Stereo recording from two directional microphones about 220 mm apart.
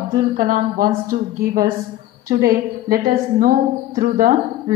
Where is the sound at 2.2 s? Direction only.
40° right (ahead or behind).